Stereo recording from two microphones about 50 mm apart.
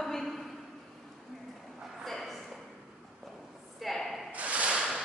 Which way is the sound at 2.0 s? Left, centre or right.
Centre.